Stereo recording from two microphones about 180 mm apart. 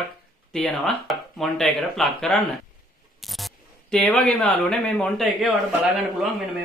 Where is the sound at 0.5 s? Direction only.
Centre (ahead or behind).